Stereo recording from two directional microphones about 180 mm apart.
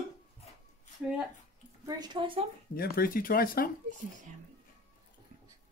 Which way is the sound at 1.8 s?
25° right (ahead or behind).